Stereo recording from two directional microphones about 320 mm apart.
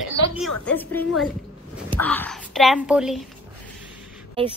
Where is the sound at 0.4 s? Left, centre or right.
Centre.